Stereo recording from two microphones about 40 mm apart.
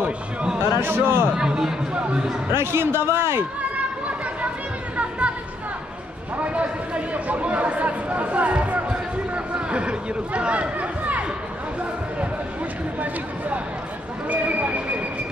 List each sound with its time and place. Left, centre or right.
0.6 s a man's voice: right
1.3 s speech: centre
2.0 s speech: right
2.5 s a man's voice: right
6.4 s speech: right
9.3 s a sound: right
14.3 s speech: right